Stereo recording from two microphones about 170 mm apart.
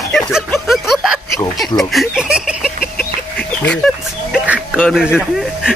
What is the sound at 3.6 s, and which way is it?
Speech, 5° left (ahead or behind).